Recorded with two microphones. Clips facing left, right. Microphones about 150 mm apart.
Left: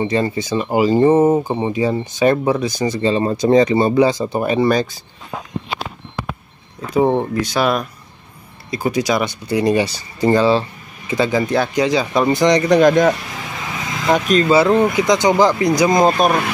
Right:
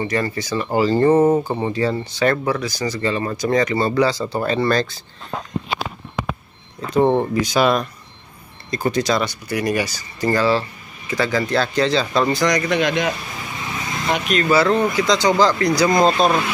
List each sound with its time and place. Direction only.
0.0 s speech: 20° left (ahead or behind)
6.9 s speech: 5° left (ahead or behind)
9.5 s speech: 25° left (ahead or behind); by 13.1 s 45° left (ahead or behind)
14.1 s speech: 40° left (ahead or behind)
14.5 s speech: 20° left (ahead or behind)